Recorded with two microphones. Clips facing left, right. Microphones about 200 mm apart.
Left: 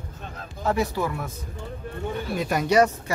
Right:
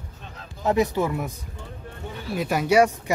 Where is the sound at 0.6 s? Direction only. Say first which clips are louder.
Right 3 dB; 20° right (ahead or behind).